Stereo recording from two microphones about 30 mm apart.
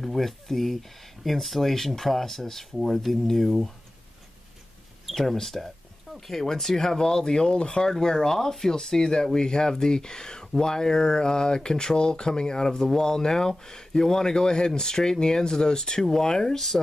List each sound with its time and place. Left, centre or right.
0.0 s speech: centre
5.1 s speech: centre; by 7.8 s left
8.0 s speech: centre
16.5 s speech: centre